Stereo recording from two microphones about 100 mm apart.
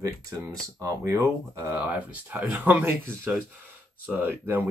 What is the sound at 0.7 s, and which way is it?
Speech, 30° right (ahead or behind).